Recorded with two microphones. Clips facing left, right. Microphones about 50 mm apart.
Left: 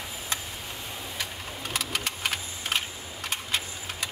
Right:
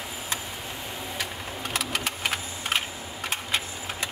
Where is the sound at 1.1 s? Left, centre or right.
Centre.